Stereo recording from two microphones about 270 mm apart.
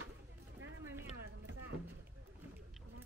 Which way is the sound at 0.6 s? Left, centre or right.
Right.